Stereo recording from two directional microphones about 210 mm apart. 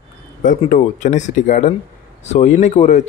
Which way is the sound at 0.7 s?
35° left (ahead or behind).